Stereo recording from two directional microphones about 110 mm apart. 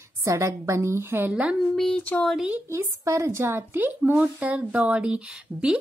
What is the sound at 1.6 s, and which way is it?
Speech, 5° left (ahead or behind).